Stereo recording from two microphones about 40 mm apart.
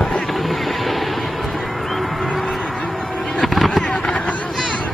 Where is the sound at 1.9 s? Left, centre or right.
Centre.